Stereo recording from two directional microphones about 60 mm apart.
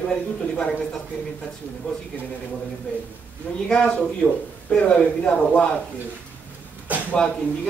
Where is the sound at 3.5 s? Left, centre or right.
Left.